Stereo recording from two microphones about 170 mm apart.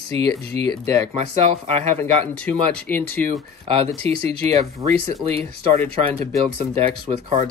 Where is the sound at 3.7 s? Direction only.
35° right (ahead or behind).